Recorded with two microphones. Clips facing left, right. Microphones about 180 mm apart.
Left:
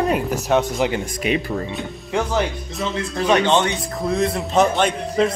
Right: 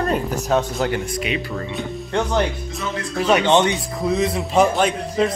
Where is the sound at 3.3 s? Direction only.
15° right (ahead or behind).